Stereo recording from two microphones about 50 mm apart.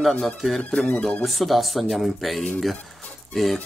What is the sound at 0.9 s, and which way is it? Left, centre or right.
Speech, left.